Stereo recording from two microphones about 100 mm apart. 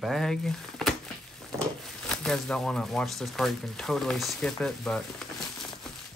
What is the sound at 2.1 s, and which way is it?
Speech, 5° left (ahead or behind).